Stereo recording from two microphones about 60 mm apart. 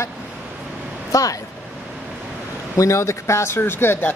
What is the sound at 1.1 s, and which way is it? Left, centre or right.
Speech, left.